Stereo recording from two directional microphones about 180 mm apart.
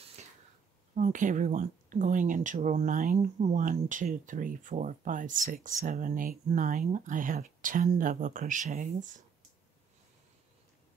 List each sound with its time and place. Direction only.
0.9 s speech: 45° right (ahead or behind)